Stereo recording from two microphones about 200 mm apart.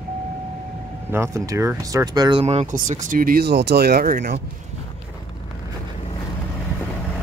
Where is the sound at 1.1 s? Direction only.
15° right (ahead or behind); by 4.4 s 50° right (ahead or behind).